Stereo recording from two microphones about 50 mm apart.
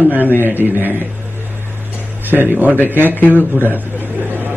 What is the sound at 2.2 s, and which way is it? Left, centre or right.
Speech, right.